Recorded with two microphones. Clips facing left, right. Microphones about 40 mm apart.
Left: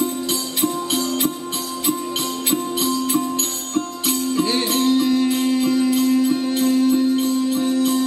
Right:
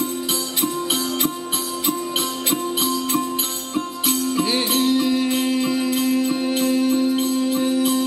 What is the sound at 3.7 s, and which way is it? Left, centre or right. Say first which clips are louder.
Music: left 1 dB; centre.